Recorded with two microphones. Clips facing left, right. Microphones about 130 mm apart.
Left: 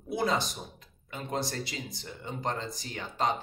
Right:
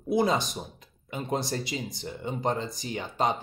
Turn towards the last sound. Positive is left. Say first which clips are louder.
# right 3 dB
turn(degrees=-15)  # may be behind; listen again after turning